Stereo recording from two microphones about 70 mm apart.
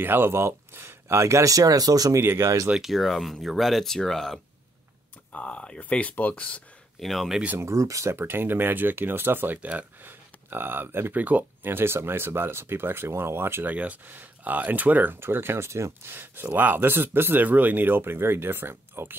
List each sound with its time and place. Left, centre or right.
0.0 s speech: right
2.1 s speech: right
2.7 s speech: centre
7.0 s speech: centre
7.5 s speech: right
13.7 s speech: right